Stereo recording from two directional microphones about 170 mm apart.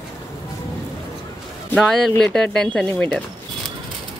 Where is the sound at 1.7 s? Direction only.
Centre (ahead or behind).